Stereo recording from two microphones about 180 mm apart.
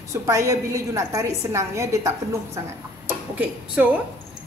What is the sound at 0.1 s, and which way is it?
A woman's voice, 15° right (ahead or behind).